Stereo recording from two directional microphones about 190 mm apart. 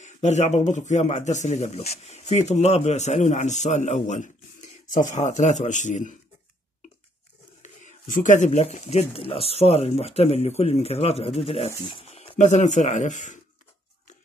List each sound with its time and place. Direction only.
0.0 s speech: 35° left (ahead or behind)
7.6 s speech: 40° left (ahead or behind)